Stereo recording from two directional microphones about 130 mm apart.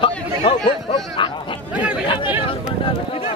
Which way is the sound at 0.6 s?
40° left (ahead or behind).